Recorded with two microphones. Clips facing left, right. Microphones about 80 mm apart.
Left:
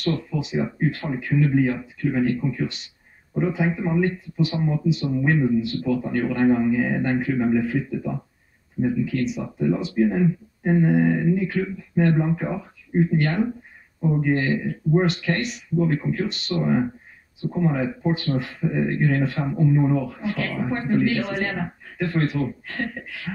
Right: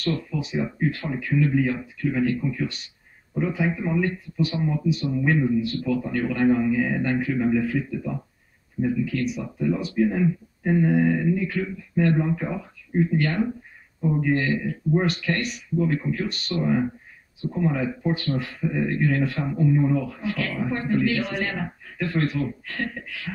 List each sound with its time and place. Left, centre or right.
0.0 s a man's voice: left